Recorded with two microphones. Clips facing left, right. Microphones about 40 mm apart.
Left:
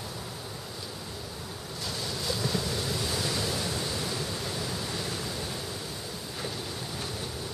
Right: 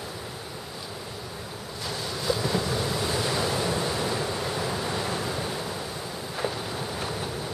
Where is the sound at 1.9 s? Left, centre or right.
Centre.